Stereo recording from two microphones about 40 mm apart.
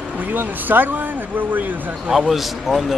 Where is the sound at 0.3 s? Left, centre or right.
Right.